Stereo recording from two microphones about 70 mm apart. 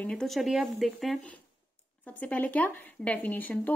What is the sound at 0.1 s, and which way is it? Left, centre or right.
Speech, centre.